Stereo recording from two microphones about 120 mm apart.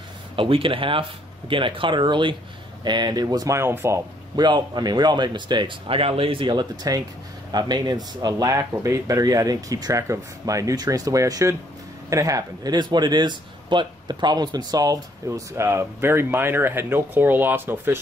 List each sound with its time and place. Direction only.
0.4 s speech: 45° right (ahead or behind); by 4.0 s 20° right (ahead or behind)
4.4 s speech: 40° right (ahead or behind)
5.9 s a man's voice: 50° right (ahead or behind); by 17.9 s 20° right (ahead or behind)